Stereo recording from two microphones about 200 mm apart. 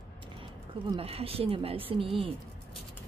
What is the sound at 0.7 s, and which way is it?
Speech, 30° right (ahead or behind).